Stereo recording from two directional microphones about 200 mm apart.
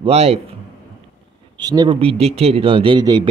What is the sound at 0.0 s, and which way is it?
Speech, 30° right (ahead or behind).